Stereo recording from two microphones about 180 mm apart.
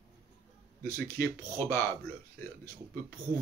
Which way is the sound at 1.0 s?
15° left (ahead or behind).